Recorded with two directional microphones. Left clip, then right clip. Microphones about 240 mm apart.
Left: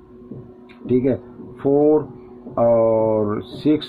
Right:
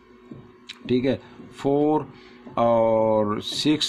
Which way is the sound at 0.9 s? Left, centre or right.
Right.